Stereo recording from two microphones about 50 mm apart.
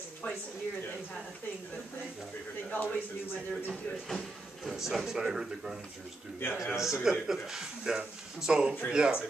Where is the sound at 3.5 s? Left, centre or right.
Centre.